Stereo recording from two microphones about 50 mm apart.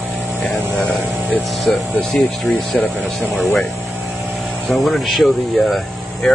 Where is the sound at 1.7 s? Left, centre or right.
Left.